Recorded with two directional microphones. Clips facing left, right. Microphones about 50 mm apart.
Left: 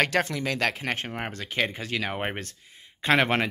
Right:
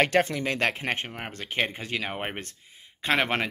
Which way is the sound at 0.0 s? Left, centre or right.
Right.